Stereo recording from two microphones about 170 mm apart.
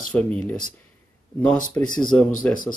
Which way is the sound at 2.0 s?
5° left (ahead or behind).